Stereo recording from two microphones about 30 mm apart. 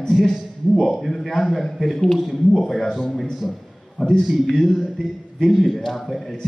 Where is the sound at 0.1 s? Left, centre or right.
Centre.